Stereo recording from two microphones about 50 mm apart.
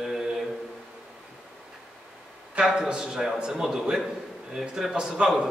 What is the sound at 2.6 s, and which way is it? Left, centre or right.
A man's voice, centre.